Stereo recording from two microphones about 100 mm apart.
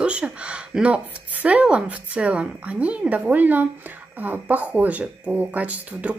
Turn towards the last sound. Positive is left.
turn(degrees=-15)  # may be behind; listen again after turning